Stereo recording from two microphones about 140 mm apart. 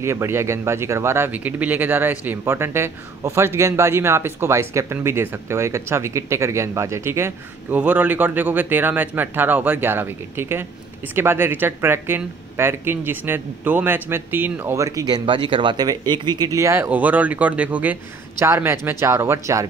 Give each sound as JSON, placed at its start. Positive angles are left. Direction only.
{"t": 0.0, "sound": "speech", "side_deg": -20}